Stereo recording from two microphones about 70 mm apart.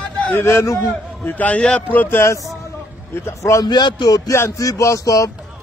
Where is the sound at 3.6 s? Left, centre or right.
Left.